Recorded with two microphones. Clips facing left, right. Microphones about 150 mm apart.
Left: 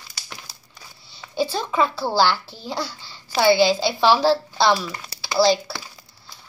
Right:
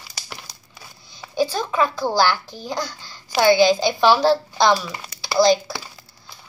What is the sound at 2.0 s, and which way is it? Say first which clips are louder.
Speech: right 1 dB; 15° right (ahead or behind).